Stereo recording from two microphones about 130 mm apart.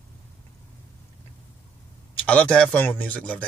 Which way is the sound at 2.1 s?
10° left (ahead or behind).